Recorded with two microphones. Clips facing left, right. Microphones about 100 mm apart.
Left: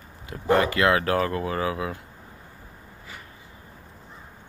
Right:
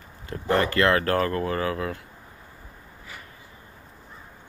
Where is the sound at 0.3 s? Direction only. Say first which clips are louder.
Left 2 dB; 10° left (ahead or behind).